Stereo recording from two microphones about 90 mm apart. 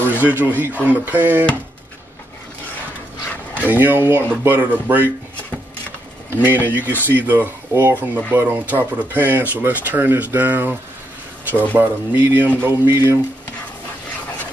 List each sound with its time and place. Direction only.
0.2 s speech: 20° right (ahead or behind)
3.6 s speech: 20° right (ahead or behind)
6.3 s speech: 20° right (ahead or behind)